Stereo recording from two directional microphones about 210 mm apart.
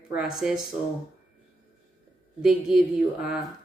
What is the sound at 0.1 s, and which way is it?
Speech, centre (ahead or behind).